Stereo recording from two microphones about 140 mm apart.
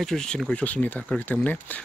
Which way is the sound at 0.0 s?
5° left (ahead or behind).